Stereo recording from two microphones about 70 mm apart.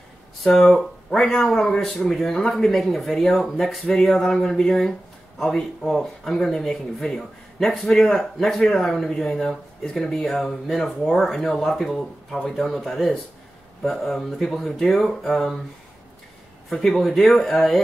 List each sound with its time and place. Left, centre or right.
0.4 s speech: centre
16.7 s speech: centre